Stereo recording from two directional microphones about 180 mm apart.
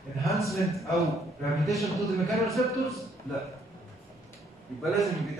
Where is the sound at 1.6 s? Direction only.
Centre (ahead or behind).